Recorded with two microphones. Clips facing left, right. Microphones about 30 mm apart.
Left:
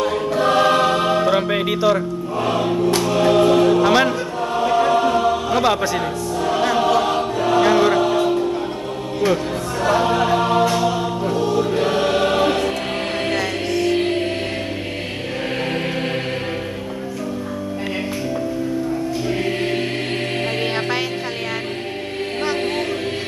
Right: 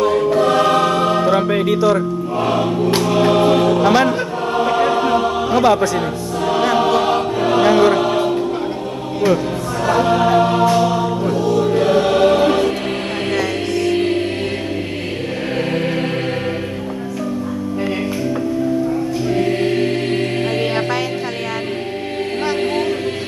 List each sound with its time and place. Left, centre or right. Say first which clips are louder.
0.0 s choir: right 5 dB; centre
0.4 s music: left 1 dB; centre
2.0 s speech: right 3 dB; centre
3.1 s music: right 1 dB; centre
4.6 s choir: even; centre
5.5 s speech: right 4 dB; centre
6.4 s music: right 3 dB; centre
8.0 s music: right 1 dB; centre
9.8 s choir: right 2 dB; centre
11.3 s choir: right 1 dB; centre
11.6 s choir: right 4 dB; centre
13.3 s music: right 5 dB; centre
19.2 s choir: right 6 dB; centre